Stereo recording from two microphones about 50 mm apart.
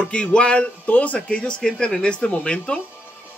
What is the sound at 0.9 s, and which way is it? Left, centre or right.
Speech, left.